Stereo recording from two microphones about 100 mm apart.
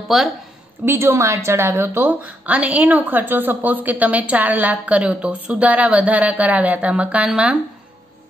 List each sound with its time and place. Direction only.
0.1 s a woman's voice: 5° right (ahead or behind)
0.8 s a woman's voice: 25° right (ahead or behind)